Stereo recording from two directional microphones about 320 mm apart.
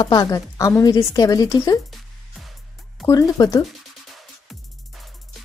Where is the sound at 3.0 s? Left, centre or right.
Centre.